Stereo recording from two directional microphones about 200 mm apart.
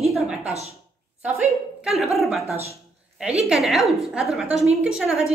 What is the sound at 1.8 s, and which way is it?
A woman's voice, centre (ahead or behind).